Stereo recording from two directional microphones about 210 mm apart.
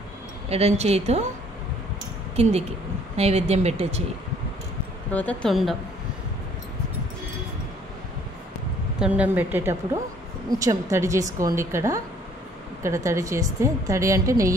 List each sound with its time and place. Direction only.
0.5 s speech: 30° right (ahead or behind)
3.2 s speech: 30° right (ahead or behind)
5.1 s a woman's voice: 5° left (ahead or behind)
9.0 s a woman's voice: 5° right (ahead or behind)